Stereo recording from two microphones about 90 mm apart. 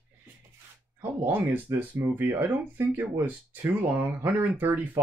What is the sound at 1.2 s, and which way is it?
Speech, 20° right (ahead or behind).